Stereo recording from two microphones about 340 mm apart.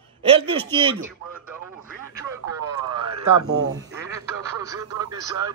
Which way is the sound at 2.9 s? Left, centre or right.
Right.